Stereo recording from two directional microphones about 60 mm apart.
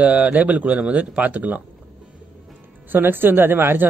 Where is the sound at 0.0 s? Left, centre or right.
Right.